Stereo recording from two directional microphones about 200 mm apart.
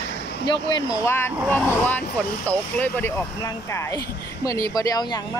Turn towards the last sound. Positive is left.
turn(degrees=20)  # may be behind; listen again after turning